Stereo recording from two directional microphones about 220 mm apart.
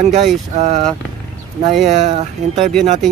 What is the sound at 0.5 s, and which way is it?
Speech, 30° right (ahead or behind).